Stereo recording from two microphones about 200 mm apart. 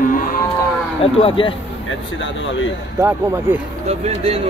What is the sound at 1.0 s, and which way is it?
Speech, 30° left (ahead or behind).